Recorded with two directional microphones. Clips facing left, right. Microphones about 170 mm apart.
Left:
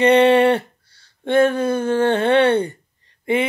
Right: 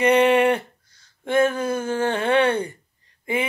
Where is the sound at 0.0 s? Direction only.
30° left (ahead or behind).